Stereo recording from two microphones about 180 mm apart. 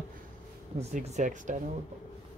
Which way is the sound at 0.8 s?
40° right (ahead or behind).